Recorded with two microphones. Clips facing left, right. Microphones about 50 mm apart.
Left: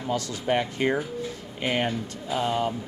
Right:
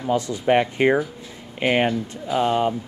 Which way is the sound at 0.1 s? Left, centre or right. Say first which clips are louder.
Right 7 dB; right.